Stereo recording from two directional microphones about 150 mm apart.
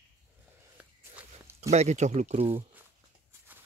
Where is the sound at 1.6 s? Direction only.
50° right (ahead or behind).